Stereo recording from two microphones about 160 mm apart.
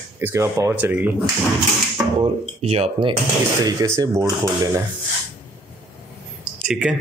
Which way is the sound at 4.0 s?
20° right (ahead or behind).